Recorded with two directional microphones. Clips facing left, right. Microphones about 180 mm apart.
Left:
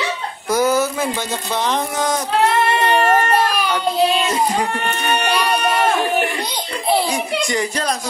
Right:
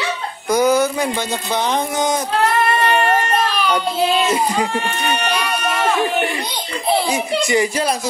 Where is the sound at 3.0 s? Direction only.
40° left (ahead or behind).